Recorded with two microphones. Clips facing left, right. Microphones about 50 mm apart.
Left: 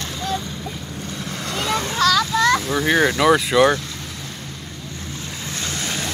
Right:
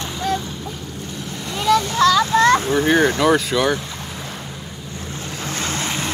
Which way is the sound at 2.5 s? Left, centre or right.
Right.